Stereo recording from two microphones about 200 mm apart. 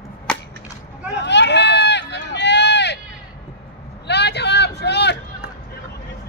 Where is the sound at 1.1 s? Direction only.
60° left (ahead or behind).